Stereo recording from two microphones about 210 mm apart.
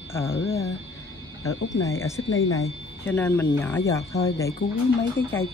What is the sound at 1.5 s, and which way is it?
Speech, 65° left (ahead or behind).